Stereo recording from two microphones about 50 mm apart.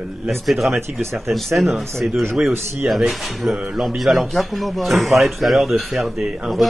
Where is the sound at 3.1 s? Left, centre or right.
Centre.